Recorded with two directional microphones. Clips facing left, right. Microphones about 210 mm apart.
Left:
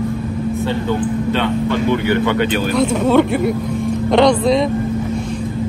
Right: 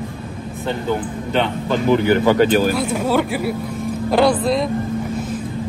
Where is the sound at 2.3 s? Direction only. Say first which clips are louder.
Right 3 dB; 40° right (ahead or behind).